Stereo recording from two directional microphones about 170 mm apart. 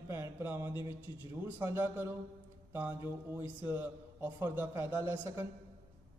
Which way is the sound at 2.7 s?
10° right (ahead or behind).